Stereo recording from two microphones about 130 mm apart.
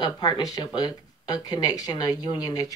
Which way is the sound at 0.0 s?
30° left (ahead or behind).